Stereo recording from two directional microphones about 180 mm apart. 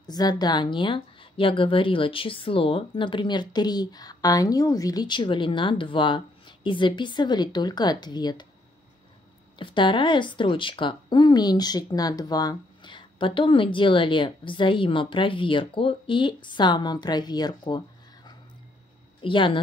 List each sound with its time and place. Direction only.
0.0 s speech: 20° left (ahead or behind)
9.6 s speech: 25° left (ahead or behind)